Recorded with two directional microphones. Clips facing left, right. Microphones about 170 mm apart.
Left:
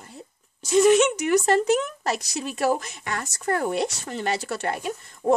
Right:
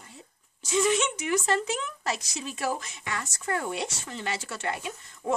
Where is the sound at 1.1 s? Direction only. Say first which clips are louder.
Left 7 dB; 40° left (ahead or behind).